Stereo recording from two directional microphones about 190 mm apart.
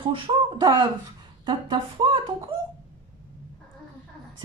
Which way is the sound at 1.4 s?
25° right (ahead or behind).